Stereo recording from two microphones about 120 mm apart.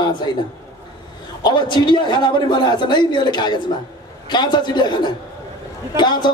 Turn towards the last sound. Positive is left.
turn(degrees=40)  # may be behind; listen again after turning